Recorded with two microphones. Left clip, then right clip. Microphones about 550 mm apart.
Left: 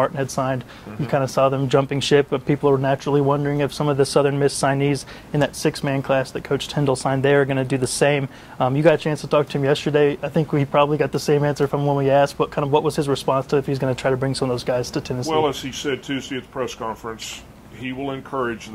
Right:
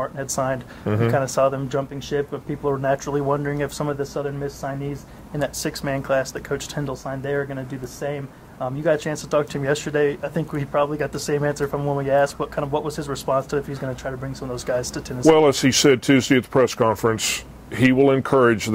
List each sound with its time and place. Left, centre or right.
0.0 s speech: left
14.5 s speech: left
15.3 s speech: right